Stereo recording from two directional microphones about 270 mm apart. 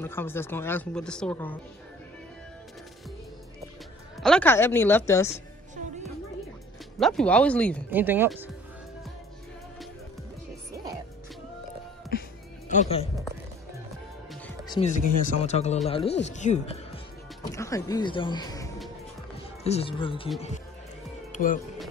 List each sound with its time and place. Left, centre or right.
0.0 s speech: centre
4.2 s speech: centre
7.0 s speech: centre
7.9 s speech: centre
12.6 s speech: left
14.7 s speech: left
21.3 s music: left